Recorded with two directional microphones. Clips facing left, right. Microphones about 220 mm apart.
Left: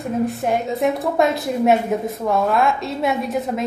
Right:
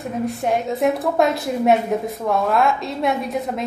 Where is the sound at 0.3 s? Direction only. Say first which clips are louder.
Even; centre (ahead or behind).